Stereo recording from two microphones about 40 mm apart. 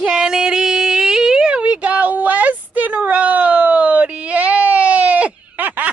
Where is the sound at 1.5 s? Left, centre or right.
Right.